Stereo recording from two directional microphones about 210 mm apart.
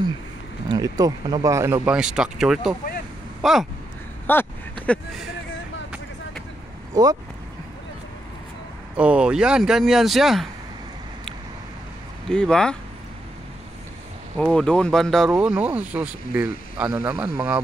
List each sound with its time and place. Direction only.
0.7 s speech: 20° right (ahead or behind); by 3.6 s centre (ahead or behind)
4.3 s a sound: 10° left (ahead or behind)
4.8 s speech: 5° left (ahead or behind)
7.0 s speech: 15° right (ahead or behind)
8.9 s speech: 5° right (ahead or behind)
12.3 s speech: 5° left (ahead or behind)
14.4 s speech: 5° left (ahead or behind)